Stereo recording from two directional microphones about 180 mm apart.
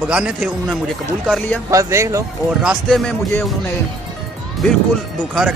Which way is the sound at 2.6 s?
Centre (ahead or behind).